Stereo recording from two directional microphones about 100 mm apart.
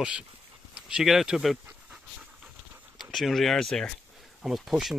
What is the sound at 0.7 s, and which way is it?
Speech, 5° right (ahead or behind).